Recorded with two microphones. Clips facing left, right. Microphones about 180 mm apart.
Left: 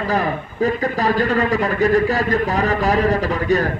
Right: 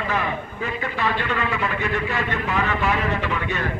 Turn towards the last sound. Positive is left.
turn(degrees=40)  # may be behind; listen again after turning